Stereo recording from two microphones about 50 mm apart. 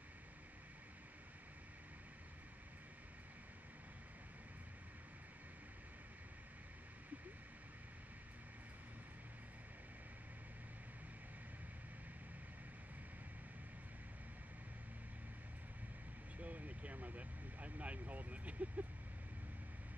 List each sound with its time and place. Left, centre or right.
16.3 s vehicle: right